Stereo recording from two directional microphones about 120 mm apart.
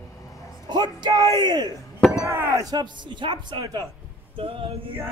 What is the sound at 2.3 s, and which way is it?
Speech, 25° right (ahead or behind).